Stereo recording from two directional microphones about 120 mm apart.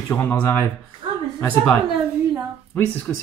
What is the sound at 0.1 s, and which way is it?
Speech, 20° left (ahead or behind).